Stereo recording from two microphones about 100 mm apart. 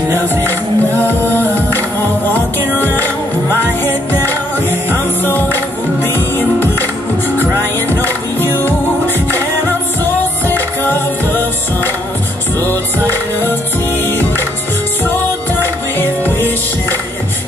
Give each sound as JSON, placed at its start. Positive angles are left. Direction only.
{"t": 0.5, "sound": "music", "side_deg": 20}
{"t": 3.5, "sound": "music", "side_deg": 20}
{"t": 8.4, "sound": "music", "side_deg": 20}
{"t": 14.0, "sound": "music", "side_deg": 20}
{"t": 15.6, "sound": "music", "side_deg": 20}